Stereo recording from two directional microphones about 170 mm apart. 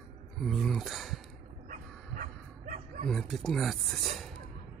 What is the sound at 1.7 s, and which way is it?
Dog, 50° right (ahead or behind).